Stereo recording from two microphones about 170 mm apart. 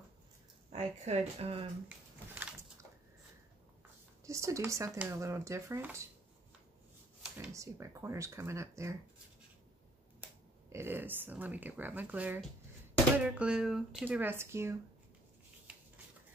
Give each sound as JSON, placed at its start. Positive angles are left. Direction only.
{"t": 0.7, "sound": "speech", "side_deg": -40}
{"t": 4.3, "sound": "speech", "side_deg": -20}
{"t": 7.3, "sound": "speech", "side_deg": -15}
{"t": 10.7, "sound": "speech", "side_deg": -15}